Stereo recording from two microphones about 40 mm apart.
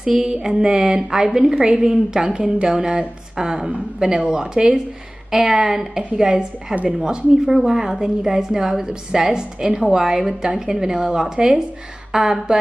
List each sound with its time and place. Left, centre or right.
0.2 s a woman's voice: centre